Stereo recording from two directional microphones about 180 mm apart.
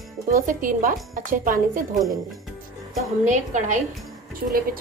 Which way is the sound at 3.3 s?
45° right (ahead or behind).